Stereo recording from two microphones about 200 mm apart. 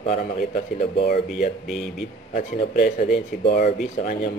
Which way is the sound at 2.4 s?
40° left (ahead or behind).